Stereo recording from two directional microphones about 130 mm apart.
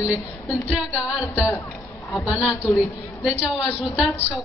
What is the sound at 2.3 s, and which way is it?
Speech, 5° right (ahead or behind).